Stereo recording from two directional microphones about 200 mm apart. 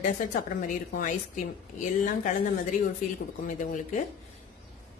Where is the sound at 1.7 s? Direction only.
40° left (ahead or behind).